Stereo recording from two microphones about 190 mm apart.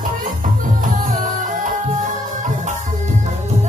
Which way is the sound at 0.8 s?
45° right (ahead or behind).